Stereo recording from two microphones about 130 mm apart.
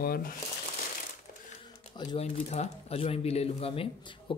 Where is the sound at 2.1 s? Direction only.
55° left (ahead or behind).